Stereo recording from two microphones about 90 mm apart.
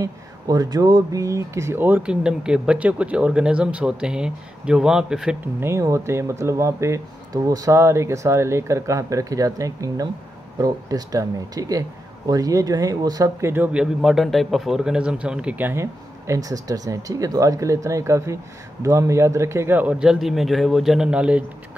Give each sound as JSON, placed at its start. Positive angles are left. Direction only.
{"t": 0.0, "sound": "speech", "side_deg": -45}
{"t": 1.2, "sound": "a man's voice", "side_deg": -35}
{"t": 2.0, "sound": "speech", "side_deg": -10}
{"t": 5.4, "sound": "a man's voice", "side_deg": -30}
{"t": 13.4, "sound": "speech", "side_deg": -25}
{"t": 13.7, "sound": "a man's voice", "side_deg": -5}
{"t": 19.9, "sound": "a man's voice", "side_deg": -5}